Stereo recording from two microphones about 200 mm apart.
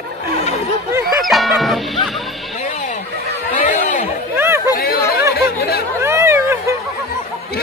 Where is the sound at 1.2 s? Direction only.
Centre (ahead or behind).